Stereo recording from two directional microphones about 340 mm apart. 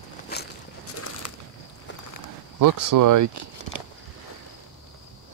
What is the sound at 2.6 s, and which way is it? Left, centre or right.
Speech, right.